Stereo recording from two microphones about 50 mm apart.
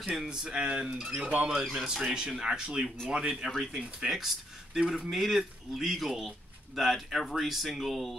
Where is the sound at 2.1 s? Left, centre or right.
Centre.